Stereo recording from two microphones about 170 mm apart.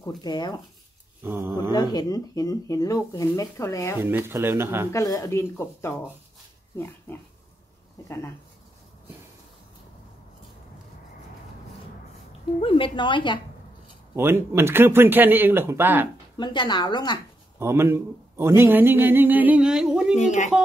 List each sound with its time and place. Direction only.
0.2 s speech: 25° left (ahead or behind)
1.2 s a man's voice: 15° right (ahead or behind)
1.7 s speech: 20° left (ahead or behind)
4.0 s a man's voice: 15° right (ahead or behind)
4.9 s speech: 20° left (ahead or behind)
7.1 s speech: 15° left (ahead or behind)
12.3 s a woman's voice: 35° left (ahead or behind)
14.1 s a man's voice: 15° right (ahead or behind)
16.3 s speech: 25° left (ahead or behind)
17.6 s a man's voice: 15° right (ahead or behind)
20.2 s speech: 45° left (ahead or behind)